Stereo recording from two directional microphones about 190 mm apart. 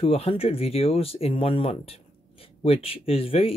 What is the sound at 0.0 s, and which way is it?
Speech, 30° left (ahead or behind).